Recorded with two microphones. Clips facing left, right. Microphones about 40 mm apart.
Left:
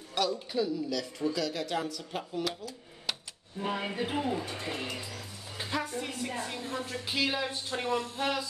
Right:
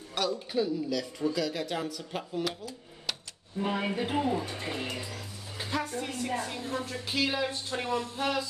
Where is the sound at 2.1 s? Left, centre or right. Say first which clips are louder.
Right 1 dB; centre.